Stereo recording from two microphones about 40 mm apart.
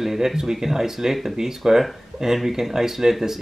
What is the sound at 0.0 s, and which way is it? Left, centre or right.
Speech, centre.